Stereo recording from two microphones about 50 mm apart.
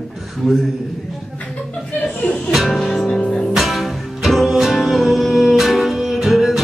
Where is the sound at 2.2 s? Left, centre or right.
Centre.